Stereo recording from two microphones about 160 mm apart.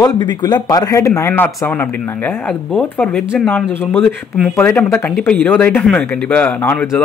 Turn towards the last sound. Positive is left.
turn(degrees=10)  # may be behind; listen again after turning